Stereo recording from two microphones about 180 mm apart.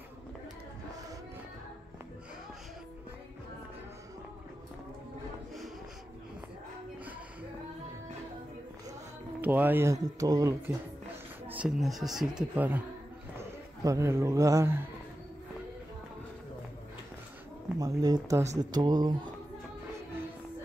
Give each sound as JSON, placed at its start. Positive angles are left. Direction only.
{"t": 9.4, "sound": "speech", "side_deg": -10}
{"t": 11.4, "sound": "a man's voice", "side_deg": -5}
{"t": 17.7, "sound": "speech", "side_deg": -20}